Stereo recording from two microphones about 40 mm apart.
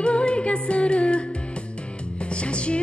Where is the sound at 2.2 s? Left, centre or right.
Left.